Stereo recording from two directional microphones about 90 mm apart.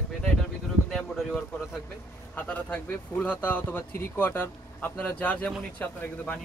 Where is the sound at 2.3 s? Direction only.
15° left (ahead or behind).